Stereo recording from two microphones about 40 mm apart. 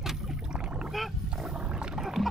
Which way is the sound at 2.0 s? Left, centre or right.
Centre.